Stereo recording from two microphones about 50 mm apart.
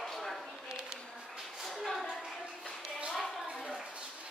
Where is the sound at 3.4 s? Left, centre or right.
Centre.